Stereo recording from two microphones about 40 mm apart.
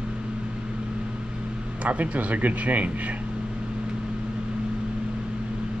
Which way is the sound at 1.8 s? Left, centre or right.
Right.